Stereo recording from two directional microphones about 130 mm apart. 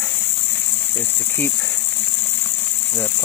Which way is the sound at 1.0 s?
15° left (ahead or behind).